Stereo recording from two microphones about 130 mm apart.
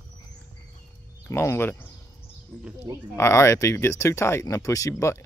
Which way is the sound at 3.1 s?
20° left (ahead or behind).